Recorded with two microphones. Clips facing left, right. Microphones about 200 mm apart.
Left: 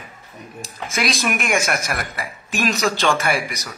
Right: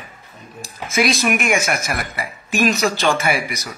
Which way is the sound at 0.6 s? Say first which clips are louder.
Right 5 dB; centre (ahead or behind).